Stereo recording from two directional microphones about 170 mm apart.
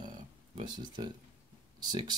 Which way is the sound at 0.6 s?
25° right (ahead or behind).